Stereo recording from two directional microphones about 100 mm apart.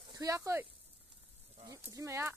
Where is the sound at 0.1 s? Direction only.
35° right (ahead or behind).